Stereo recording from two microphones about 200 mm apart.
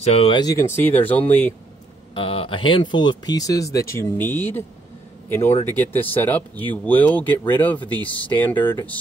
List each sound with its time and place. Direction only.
0.0 s speech: 30° left (ahead or behind); by 1.5 s 10° left (ahead or behind)
2.1 s speech: 25° left (ahead or behind); by 4.6 s 10° left (ahead or behind)
5.7 s speech: 10° left (ahead or behind)